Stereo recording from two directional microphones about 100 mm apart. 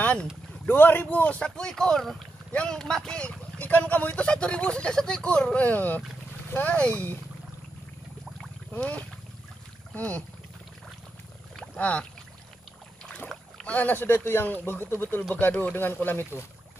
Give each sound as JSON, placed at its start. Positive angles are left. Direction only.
{"t": 0.0, "sound": "boat", "side_deg": 10}
{"t": 0.7, "sound": "speech", "side_deg": 20}
{"t": 8.7, "sound": "speech", "side_deg": 15}
{"t": 11.5, "sound": "boat", "side_deg": 10}
{"t": 13.0, "sound": "speech", "side_deg": 5}